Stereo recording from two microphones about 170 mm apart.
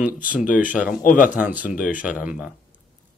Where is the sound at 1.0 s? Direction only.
50° left (ahead or behind).